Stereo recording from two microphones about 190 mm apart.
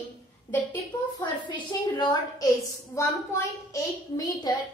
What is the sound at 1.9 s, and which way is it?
A woman's voice, 25° left (ahead or behind).